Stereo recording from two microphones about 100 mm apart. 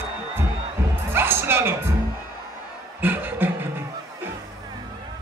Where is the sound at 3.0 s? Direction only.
20° right (ahead or behind).